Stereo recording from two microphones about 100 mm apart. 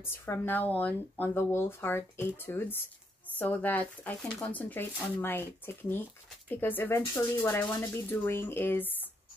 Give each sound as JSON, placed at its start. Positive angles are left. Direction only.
{"t": 0.0, "sound": "speech", "side_deg": 25}